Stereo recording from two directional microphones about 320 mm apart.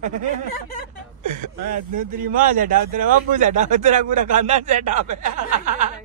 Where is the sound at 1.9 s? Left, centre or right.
Right.